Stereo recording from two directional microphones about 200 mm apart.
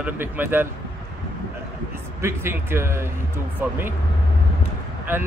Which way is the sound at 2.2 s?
10° right (ahead or behind).